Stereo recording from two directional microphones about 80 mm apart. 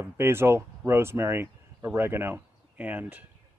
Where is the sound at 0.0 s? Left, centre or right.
Right.